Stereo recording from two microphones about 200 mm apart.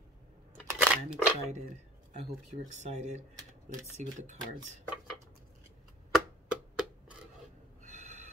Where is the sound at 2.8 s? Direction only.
35° right (ahead or behind).